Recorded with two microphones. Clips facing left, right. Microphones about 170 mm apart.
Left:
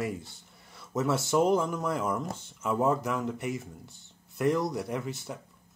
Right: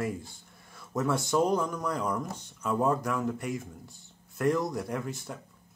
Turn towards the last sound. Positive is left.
turn(degrees=0)  # may be behind; listen again after turning